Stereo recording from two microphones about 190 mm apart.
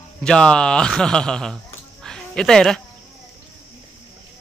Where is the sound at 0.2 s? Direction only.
5° left (ahead or behind).